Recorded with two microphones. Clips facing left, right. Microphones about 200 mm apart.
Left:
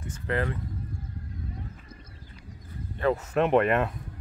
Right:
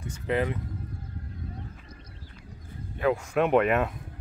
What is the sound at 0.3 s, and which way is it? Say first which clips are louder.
Speech: right 2 dB; 20° right (ahead or behind).